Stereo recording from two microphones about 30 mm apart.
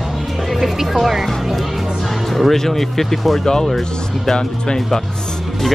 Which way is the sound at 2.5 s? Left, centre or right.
Centre.